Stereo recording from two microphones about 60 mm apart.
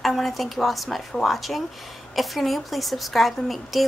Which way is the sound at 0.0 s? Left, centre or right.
Centre.